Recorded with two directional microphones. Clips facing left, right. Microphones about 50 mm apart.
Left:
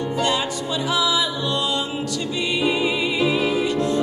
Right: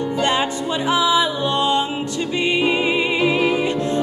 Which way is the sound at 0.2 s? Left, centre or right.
Right.